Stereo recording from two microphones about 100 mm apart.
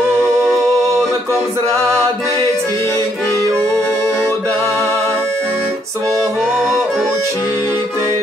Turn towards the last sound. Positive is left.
turn(degrees=0)  # may be behind; listen again after turning